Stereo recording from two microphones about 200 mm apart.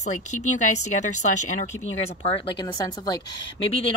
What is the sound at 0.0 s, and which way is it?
Speech, 35° left (ahead or behind).